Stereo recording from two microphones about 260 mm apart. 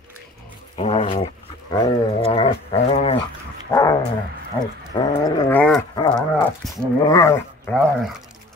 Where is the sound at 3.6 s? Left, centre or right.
Centre.